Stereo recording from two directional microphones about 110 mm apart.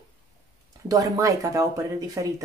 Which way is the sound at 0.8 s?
30° right (ahead or behind).